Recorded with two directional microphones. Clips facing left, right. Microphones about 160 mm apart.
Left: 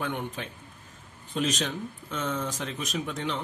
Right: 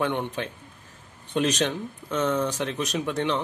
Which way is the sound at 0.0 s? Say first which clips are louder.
Right 6 dB; 75° right (ahead or behind).